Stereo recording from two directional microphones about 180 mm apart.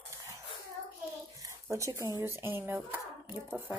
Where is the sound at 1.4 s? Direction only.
15° right (ahead or behind).